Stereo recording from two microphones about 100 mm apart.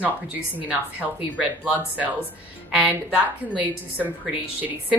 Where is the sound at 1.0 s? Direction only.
15° right (ahead or behind).